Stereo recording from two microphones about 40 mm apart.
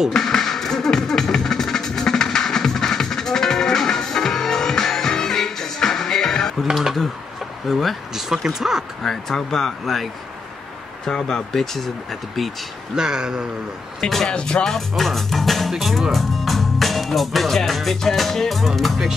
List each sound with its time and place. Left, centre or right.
0.1 s music: centre
6.6 s speech: centre
8.1 s speech: centre
9.0 s speech: centre
11.1 s speech: centre
12.9 s speech: centre
14.0 s speech: centre